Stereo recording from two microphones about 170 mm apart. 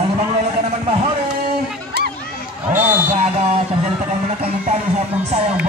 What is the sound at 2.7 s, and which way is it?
Speech, 10° right (ahead or behind).